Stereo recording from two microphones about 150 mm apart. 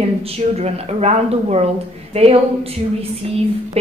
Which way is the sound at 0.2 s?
45° right (ahead or behind).